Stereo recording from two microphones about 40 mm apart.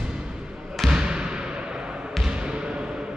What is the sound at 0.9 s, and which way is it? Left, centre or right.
Basketball bounce, right.